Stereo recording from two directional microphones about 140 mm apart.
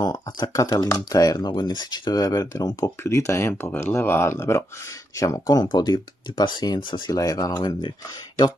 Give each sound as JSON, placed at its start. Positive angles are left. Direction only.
{"t": 0.0, "sound": "speech", "side_deg": 30}